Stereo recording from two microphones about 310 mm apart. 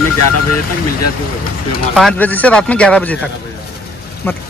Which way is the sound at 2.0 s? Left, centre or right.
Centre.